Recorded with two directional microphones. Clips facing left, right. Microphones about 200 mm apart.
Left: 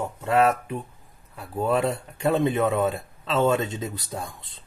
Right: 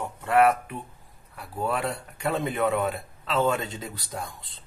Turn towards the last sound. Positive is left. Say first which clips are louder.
# left 5 dB
turn(degrees=25)  # may be behind; listen again after turning